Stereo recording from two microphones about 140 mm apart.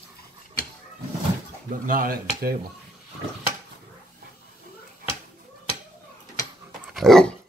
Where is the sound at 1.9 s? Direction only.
90° right.